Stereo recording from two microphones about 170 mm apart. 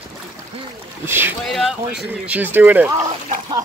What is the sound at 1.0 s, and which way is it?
Speech, 15° right (ahead or behind).